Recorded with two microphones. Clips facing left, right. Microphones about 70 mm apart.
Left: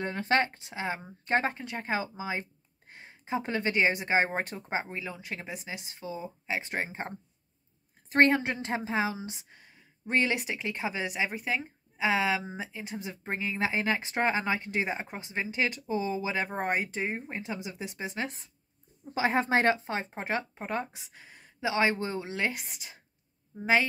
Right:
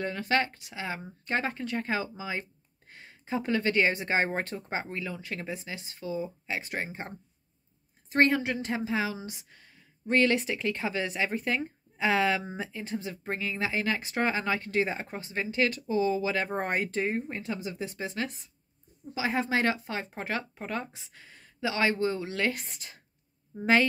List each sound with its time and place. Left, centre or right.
0.0 s a woman's voice: left
16.4 s speech: centre; by 18.4 s left
19.1 s a woman's voice: left
22.5 s speech: centre